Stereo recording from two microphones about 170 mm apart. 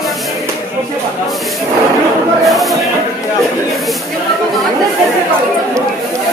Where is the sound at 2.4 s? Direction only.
Centre (ahead or behind).